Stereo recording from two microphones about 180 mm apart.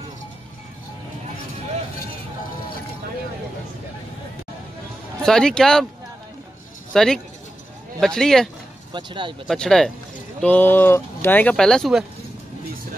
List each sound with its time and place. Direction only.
5.2 s speech: 5° left (ahead or behind)
6.9 s speech: centre (ahead or behind)
8.9 s speech: 25° right (ahead or behind)
9.5 s speech: 5° left (ahead or behind)